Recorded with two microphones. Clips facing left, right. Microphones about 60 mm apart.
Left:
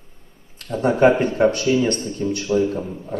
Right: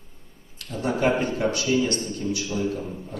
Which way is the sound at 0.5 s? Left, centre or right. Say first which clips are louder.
Left 7 dB; left.